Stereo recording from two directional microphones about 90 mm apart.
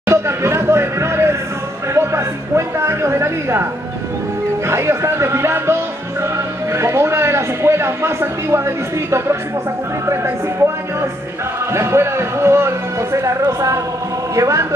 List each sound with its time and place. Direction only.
0.1 s a sound: 30° right (ahead or behind)
2.0 s speech: 30° right (ahead or behind)
4.6 s a man's voice: 30° right (ahead or behind)